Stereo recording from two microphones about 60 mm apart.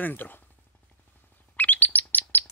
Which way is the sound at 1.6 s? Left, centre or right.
Left.